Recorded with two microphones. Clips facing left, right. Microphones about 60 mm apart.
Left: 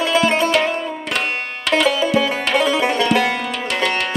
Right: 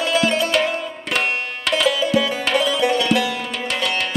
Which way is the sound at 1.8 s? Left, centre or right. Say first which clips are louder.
Right 1 dB; left.